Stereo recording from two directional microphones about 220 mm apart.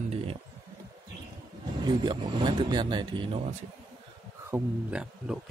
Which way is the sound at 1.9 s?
20° right (ahead or behind).